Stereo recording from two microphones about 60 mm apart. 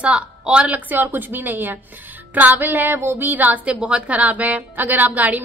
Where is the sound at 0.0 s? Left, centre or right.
Centre.